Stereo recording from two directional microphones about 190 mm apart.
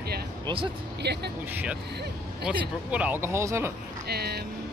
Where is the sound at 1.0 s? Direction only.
65° right (ahead or behind).